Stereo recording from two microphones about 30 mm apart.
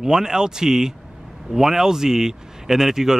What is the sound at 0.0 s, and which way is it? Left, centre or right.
Speech, centre.